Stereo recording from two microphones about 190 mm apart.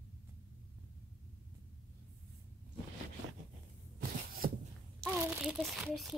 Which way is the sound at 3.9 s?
50° right (ahead or behind).